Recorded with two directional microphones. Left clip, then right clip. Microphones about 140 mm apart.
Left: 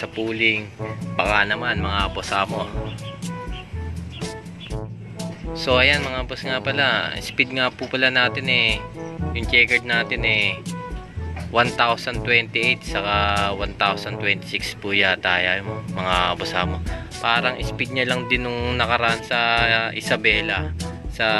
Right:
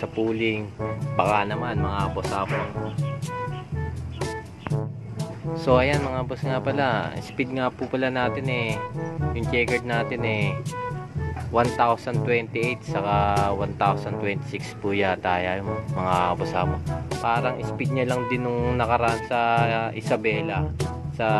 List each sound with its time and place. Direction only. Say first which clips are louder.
0.0 s speech: left 4 dB; 10° right (ahead or behind)
4.2 s music: right 2 dB; centre (ahead or behind)
5.5 s speech: left 2 dB; 15° right (ahead or behind)
5.9 s speech: left 6 dB; centre (ahead or behind)
6.1 s speech: left 2 dB; 15° right (ahead or behind)
9.5 s speech: left 7 dB; 15° right (ahead or behind)
10.4 s speech: left 5 dB; 5° right (ahead or behind)
15.7 s speech: left 2 dB; centre (ahead or behind)